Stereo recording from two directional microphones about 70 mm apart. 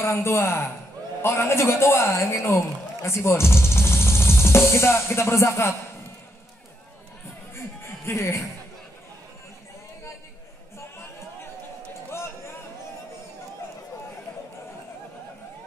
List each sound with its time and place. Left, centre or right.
0.0 s a man's voice: left
7.5 s music: left